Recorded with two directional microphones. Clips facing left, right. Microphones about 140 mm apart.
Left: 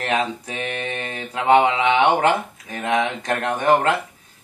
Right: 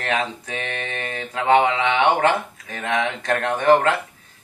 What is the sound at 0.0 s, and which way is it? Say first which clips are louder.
Speech: left 2 dB; 20° left (ahead or behind).